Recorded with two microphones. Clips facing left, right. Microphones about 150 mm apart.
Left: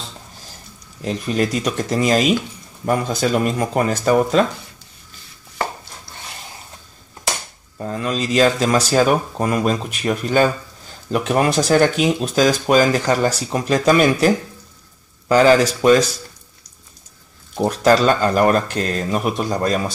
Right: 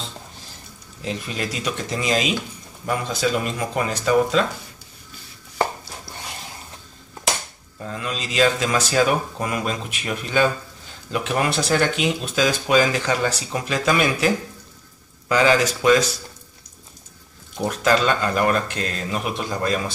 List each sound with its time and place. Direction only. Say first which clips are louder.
1.0 s speech: left 7 dB; 45° left (ahead or behind)
7.8 s speech: left 7 dB; 40° left (ahead or behind)
17.6 s speech: left 5 dB; 35° left (ahead or behind)